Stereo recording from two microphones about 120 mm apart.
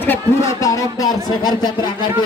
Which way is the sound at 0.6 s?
30° left (ahead or behind).